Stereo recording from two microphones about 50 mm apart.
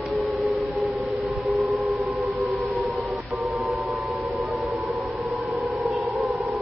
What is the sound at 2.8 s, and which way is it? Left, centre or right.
Siren, centre.